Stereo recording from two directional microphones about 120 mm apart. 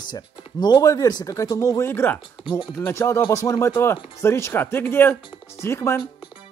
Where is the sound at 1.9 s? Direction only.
20° left (ahead or behind).